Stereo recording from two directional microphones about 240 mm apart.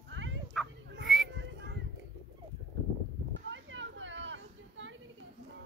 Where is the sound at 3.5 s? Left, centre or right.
Right.